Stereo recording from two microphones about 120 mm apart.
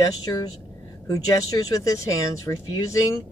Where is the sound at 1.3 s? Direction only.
30° left (ahead or behind).